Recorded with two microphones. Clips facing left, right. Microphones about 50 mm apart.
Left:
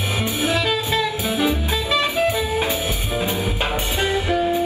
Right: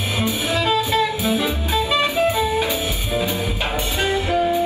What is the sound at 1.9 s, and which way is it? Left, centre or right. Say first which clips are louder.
Music: even; right.